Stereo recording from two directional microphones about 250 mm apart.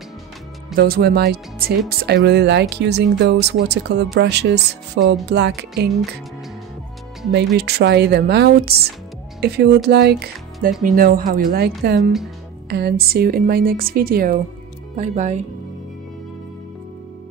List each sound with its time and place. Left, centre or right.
0.7 s a woman's voice: right
7.3 s a woman's voice: right
12.0 s speech: centre
12.6 s a woman's voice: right